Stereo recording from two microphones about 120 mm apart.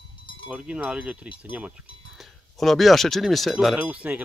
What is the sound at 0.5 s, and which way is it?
Speech, 10° right (ahead or behind).